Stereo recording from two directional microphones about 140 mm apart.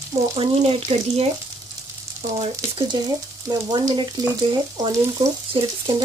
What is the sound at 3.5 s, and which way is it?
Speech, 35° right (ahead or behind).